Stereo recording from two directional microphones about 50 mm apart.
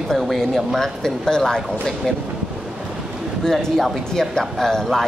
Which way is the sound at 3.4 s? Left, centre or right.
Centre.